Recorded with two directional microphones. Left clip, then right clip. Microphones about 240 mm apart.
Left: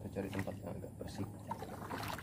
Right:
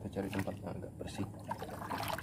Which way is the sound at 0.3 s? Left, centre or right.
Right.